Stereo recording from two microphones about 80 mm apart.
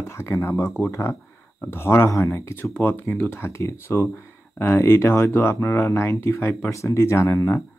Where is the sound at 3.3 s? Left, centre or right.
Left.